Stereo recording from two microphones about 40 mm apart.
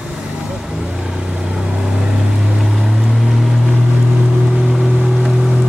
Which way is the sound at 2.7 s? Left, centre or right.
Centre.